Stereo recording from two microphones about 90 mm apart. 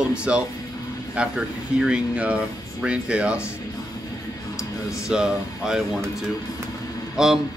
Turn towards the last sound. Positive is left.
turn(degrees=-5)  # may be behind; listen again after turning